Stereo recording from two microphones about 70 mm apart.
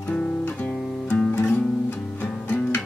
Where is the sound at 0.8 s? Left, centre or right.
Centre.